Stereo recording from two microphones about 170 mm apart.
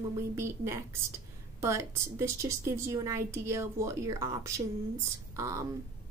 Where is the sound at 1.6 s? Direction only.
15° right (ahead or behind).